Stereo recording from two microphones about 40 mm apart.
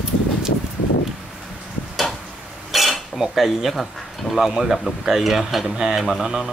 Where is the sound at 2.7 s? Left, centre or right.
Centre.